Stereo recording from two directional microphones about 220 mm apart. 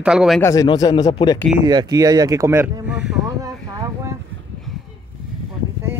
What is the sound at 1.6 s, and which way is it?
Speech, 15° right (ahead or behind).